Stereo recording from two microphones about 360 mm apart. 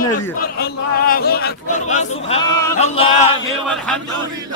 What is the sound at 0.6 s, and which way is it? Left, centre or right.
Speech, left.